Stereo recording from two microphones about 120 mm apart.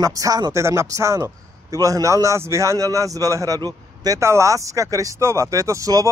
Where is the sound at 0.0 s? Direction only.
30° right (ahead or behind).